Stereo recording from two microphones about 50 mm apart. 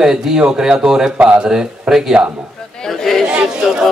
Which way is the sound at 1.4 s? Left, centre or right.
Centre.